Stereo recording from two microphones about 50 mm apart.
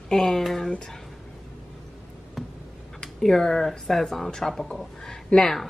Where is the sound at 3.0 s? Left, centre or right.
Centre.